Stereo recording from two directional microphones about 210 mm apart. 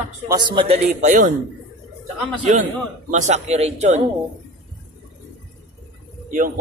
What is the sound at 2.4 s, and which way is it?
A man's voice, 35° right (ahead or behind).